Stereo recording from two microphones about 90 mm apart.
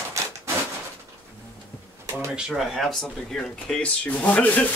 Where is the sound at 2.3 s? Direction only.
5° right (ahead or behind).